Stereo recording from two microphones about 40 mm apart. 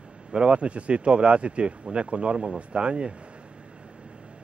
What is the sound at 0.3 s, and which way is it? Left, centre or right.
Speech, right.